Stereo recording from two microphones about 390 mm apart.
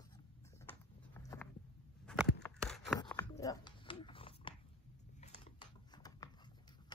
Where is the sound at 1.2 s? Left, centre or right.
Centre.